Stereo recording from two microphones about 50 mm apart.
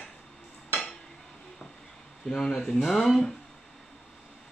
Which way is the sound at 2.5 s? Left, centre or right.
Centre.